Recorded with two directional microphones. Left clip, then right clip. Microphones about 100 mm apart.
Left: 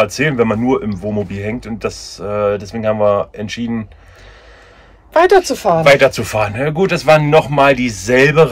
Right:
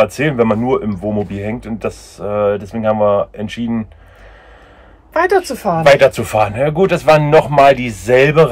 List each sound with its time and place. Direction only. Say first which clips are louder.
0.1 s speech: even; 40° right (ahead or behind)
5.1 s a woman's voice: left 4 dB; 20° left (ahead or behind)
5.9 s speech: right 2 dB; 55° right (ahead or behind)
6.1 s speech: right 3 dB; 40° right (ahead or behind)